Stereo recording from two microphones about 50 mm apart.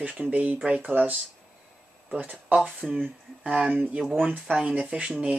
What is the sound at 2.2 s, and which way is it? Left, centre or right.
Speech, right.